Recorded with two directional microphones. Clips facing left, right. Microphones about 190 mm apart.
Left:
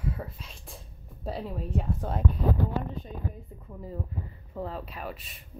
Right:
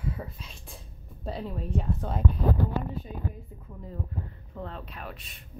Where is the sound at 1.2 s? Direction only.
5° left (ahead or behind).